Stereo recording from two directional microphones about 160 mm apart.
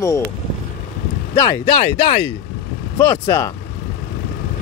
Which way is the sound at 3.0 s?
20° left (ahead or behind).